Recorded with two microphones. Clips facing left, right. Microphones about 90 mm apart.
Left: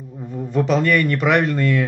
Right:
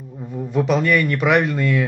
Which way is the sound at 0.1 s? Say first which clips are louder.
Even; centre (ahead or behind).